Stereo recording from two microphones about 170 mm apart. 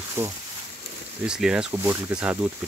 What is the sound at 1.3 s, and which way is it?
Speech, 5° right (ahead or behind).